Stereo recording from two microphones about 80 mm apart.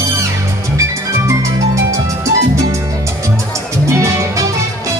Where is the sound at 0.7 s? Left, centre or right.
Right.